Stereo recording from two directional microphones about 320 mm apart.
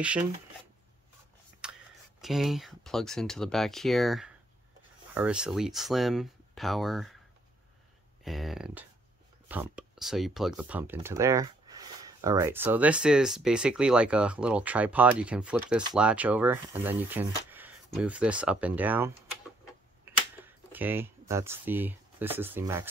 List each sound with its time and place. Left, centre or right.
1.6 s a sound: centre
2.2 s speech: centre
8.2 s speech: centre
20.1 s camera: centre
20.7 s speech: centre